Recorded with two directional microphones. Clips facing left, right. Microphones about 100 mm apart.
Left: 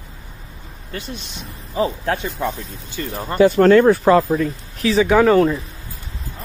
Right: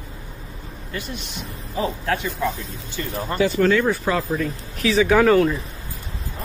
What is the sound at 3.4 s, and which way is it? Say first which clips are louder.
Speech: left 7 dB; 55° left (ahead or behind).